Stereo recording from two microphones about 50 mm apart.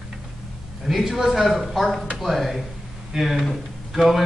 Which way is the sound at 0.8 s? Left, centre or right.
Centre.